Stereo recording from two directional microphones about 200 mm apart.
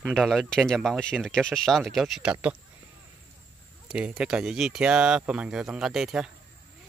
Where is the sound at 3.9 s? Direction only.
5° right (ahead or behind).